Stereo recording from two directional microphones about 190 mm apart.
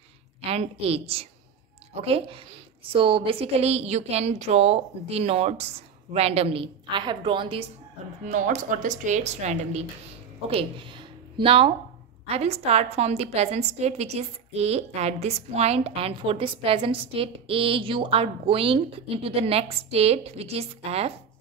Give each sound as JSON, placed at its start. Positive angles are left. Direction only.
{"t": 0.5, "sound": "a woman's voice", "side_deg": -30}
{"t": 8.3, "sound": "a woman's voice", "side_deg": -40}